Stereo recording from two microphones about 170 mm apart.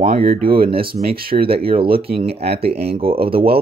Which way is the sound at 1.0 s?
60° right (ahead or behind).